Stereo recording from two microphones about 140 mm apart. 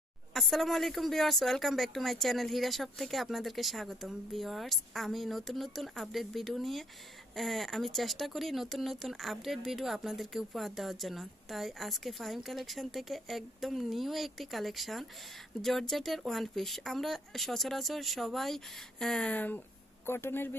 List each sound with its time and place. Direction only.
0.3 s speech: centre (ahead or behind)